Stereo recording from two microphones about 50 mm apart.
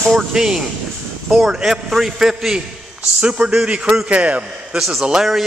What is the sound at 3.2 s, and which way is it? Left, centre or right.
A man's voice, right.